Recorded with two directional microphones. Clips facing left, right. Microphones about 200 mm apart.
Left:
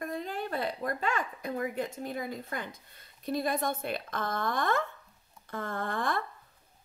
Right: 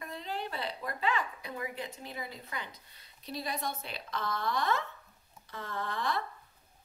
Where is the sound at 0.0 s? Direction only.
50° left (ahead or behind).